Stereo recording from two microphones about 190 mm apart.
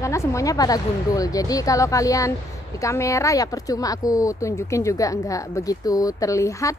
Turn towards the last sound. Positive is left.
turn(degrees=15)  # may be behind; listen again after turning